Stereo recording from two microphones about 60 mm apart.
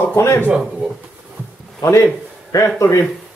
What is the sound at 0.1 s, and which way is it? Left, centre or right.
Speech, left.